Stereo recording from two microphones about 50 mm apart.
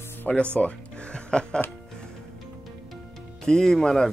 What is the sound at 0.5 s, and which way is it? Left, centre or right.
Music, left.